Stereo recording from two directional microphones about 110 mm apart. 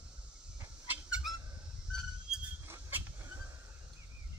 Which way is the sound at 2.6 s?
20° right (ahead or behind).